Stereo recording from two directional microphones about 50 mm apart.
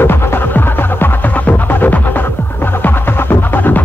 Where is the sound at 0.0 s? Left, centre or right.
Left.